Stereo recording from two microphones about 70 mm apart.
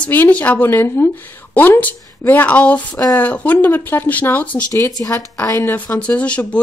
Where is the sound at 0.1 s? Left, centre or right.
Left.